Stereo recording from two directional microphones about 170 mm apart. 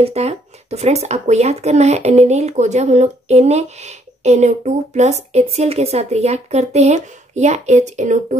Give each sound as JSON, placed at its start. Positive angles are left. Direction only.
{"t": 0.0, "sound": "speech", "side_deg": -40}